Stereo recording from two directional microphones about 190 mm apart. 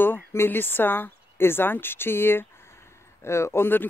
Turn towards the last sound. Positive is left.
turn(degrees=10)  # may be behind; listen again after turning